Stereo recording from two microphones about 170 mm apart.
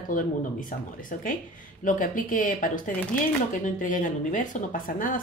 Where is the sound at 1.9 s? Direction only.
50° left (ahead or behind).